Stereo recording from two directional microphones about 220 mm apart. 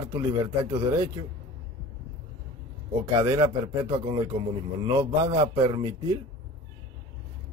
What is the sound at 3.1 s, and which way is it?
A man's voice, 15° right (ahead or behind).